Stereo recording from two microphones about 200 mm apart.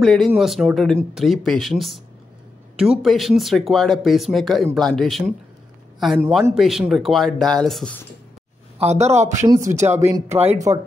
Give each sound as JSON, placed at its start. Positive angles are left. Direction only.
{"t": 0.0, "sound": "speech", "side_deg": 0}
{"t": 8.7, "sound": "speech", "side_deg": -35}
{"t": 9.2, "sound": "speech", "side_deg": -15}